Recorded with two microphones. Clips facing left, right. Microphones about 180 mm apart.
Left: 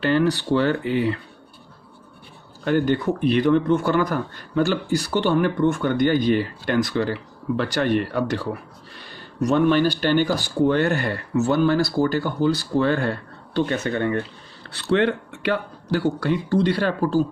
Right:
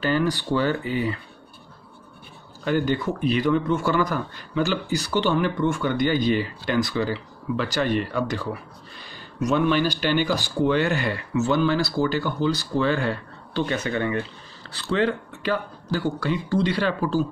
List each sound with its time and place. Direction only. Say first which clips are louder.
0.0 s speech: left 3 dB; 65° left (ahead or behind)
2.6 s speech: left 3 dB; 55° left (ahead or behind)
8.9 s a sound: left 3 dB; 60° left (ahead or behind)
9.5 s speech: left 3 dB; 55° left (ahead or behind)
14.6 s speech: left 3 dB; 65° left (ahead or behind)
16.3 s speech: left 2 dB; 60° left (ahead or behind)